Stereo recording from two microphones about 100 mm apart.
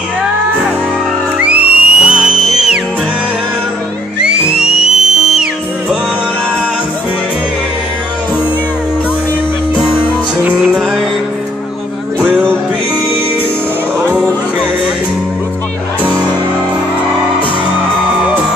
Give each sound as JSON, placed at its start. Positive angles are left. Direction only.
{"t": 1.4, "sound": "music", "side_deg": -15}
{"t": 4.2, "sound": "music", "side_deg": -10}
{"t": 10.4, "sound": "music", "side_deg": -10}
{"t": 12.2, "sound": "music", "side_deg": -15}
{"t": 14.0, "sound": "music", "side_deg": -10}